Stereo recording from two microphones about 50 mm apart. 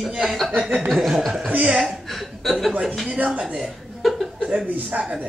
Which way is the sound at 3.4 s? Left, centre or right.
Right.